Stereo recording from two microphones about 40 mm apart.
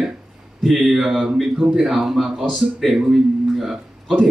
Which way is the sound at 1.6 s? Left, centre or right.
Centre.